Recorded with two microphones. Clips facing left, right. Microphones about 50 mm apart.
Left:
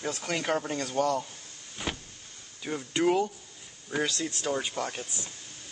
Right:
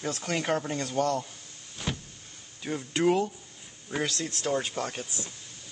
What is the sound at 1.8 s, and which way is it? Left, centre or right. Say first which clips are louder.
Power windows: even; centre.